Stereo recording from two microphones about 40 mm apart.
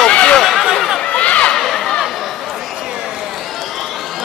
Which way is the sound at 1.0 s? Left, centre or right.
Left.